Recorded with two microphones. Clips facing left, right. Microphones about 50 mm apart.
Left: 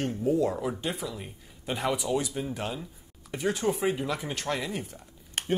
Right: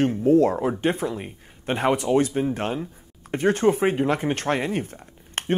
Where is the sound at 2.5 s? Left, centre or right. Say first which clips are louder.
Right 7 dB; right.